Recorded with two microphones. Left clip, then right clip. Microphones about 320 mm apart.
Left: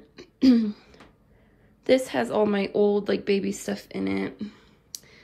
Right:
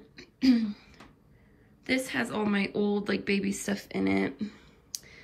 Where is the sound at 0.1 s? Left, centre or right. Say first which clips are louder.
Left 5 dB; centre.